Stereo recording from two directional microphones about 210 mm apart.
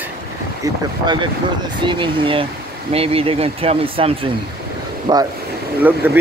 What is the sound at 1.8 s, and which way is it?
Speech, 20° right (ahead or behind).